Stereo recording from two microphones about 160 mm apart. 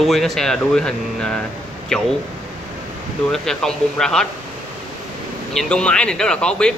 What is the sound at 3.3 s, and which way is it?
Speech, 5° left (ahead or behind).